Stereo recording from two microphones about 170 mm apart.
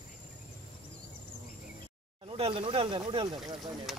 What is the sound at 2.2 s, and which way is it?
Speech, 30° right (ahead or behind).